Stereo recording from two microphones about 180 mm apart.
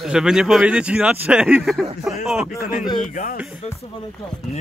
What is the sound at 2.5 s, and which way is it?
Music, 50° left (ahead or behind).